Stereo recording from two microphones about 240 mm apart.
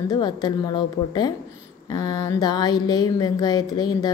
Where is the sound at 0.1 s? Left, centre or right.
Centre.